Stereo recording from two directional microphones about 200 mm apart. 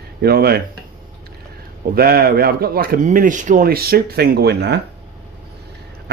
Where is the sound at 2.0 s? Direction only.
50° right (ahead or behind).